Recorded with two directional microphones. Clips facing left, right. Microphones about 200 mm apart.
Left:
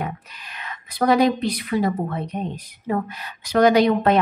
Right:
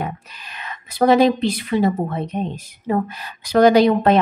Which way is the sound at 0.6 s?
25° right (ahead or behind).